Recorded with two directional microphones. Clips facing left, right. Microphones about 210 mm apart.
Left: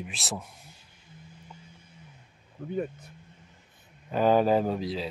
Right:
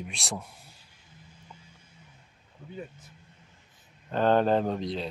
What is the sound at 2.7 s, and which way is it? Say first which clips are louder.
Speech: left 10 dB; 60° left (ahead or behind).